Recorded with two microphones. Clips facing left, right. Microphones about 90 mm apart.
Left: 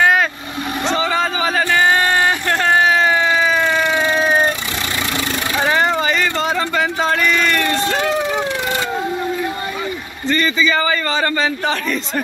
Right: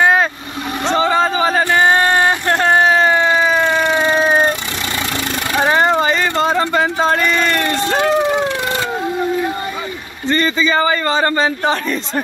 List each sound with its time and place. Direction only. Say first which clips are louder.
0.0 s vehicle: right 1 dB; 25° right (ahead or behind)
5.6 s vehicle: right 3 dB; 30° right (ahead or behind)
10.2 s a man's voice: right 1 dB; 35° right (ahead or behind)